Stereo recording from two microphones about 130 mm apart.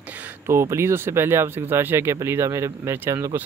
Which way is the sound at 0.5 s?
20° right (ahead or behind).